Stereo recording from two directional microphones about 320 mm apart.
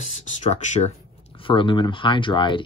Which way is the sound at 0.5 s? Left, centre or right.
Left.